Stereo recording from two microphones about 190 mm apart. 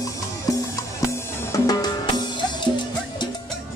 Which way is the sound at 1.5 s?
20° left (ahead or behind).